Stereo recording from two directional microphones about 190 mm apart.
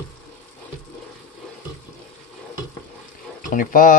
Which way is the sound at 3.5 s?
45° left (ahead or behind).